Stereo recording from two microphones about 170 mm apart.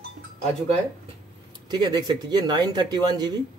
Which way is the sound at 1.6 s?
25° right (ahead or behind).